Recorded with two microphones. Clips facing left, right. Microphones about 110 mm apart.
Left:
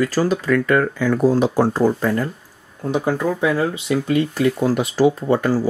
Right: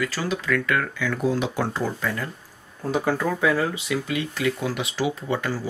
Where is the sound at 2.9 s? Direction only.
20° left (ahead or behind).